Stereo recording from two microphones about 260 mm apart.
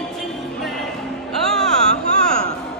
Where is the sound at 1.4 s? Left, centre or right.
Centre.